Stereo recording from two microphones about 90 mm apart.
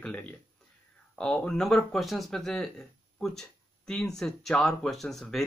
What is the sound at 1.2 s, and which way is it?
Speech, 10° left (ahead or behind).